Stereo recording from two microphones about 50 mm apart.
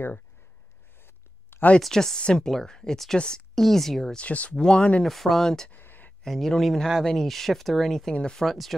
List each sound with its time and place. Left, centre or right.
0.9 s a sound: left
1.8 s speech: centre
3.5 s speech: centre
4.2 s speech: left
4.6 s speech: centre
5.0 s speech: centre
5.7 s a sound: left
6.2 s speech: centre
8.1 s speech: centre
8.5 s speech: centre